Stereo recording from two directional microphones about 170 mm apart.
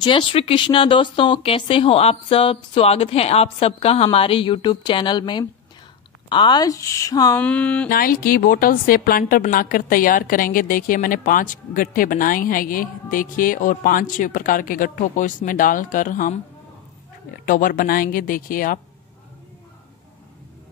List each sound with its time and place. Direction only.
0.0 s a woman's voice: 30° left (ahead or behind)
7.3 s a sound: 10° left (ahead or behind)
7.9 s a woman's voice: 55° left (ahead or behind)
17.5 s speech: 55° left (ahead or behind)